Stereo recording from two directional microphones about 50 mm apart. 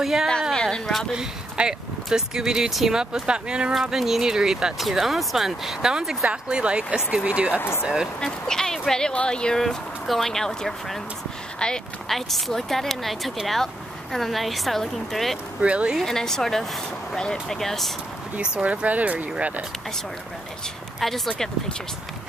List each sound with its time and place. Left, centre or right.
0.0 s speech: centre
0.6 s speech: centre
1.1 s speech: centre
3.9 s speech: centre
4.7 s speech: centre
8.2 s speech: centre
9.6 s speech: centre
12.1 s speech: centre
15.6 s speech: right
16.0 s speech: centre
18.4 s speech: right
21.3 s speech: centre